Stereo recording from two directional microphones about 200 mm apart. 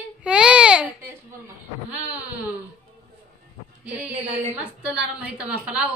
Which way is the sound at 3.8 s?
5° right (ahead or behind).